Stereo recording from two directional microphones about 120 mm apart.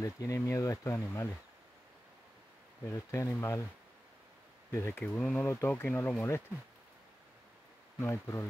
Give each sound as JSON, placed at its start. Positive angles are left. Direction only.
{"t": 0.0, "sound": "speech", "side_deg": 30}
{"t": 2.8, "sound": "speech", "side_deg": 25}
{"t": 4.7, "sound": "speech", "side_deg": 20}
{"t": 5.0, "sound": "speech", "side_deg": 10}
{"t": 8.0, "sound": "speech", "side_deg": 20}